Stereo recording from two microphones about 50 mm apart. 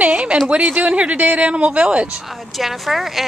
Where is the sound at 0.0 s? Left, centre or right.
Right.